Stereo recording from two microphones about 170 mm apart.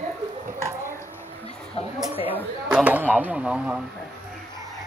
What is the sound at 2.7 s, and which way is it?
Speech, 10° right (ahead or behind).